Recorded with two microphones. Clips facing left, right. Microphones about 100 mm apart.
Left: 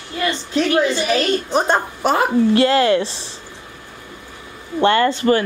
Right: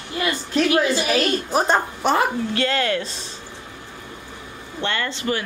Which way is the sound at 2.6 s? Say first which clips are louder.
Left 5 dB; 30° left (ahead or behind).